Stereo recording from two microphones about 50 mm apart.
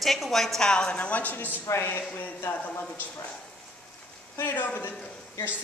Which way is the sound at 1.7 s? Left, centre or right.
Left.